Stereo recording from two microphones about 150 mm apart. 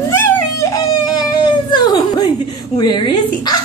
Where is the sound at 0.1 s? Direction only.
15° left (ahead or behind).